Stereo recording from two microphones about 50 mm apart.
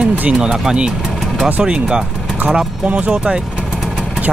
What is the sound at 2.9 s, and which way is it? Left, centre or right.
Speech, right.